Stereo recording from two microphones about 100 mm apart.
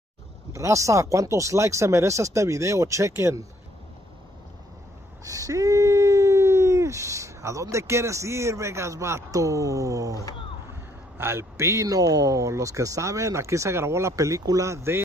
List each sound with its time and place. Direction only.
0.5 s speech: 30° right (ahead or behind)
5.2 s speech: 35° right (ahead or behind)